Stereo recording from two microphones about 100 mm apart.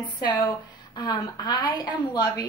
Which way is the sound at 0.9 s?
45° left (ahead or behind).